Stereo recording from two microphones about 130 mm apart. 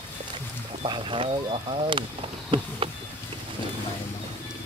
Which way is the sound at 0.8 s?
40° right (ahead or behind).